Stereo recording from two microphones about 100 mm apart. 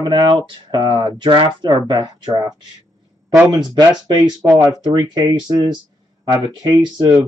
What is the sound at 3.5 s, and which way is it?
Speech, 45° right (ahead or behind).